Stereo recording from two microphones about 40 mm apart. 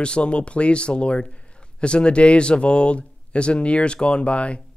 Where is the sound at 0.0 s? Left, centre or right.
Left.